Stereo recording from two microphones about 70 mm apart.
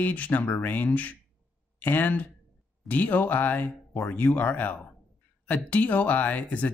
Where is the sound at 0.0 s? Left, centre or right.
Left.